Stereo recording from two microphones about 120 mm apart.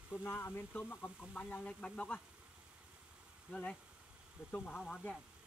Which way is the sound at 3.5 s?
5° left (ahead or behind).